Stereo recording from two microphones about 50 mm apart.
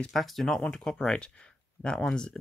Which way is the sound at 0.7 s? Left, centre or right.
Centre.